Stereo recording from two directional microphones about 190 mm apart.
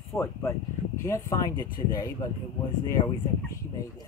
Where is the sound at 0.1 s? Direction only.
15° left (ahead or behind).